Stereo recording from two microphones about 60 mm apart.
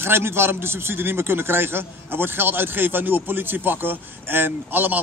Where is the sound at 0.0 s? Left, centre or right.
Right.